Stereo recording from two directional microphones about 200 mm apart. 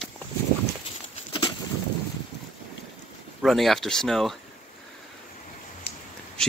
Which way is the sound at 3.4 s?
Centre (ahead or behind).